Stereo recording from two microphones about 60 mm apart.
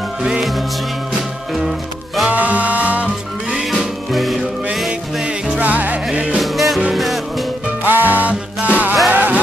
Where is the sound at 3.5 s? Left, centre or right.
Centre.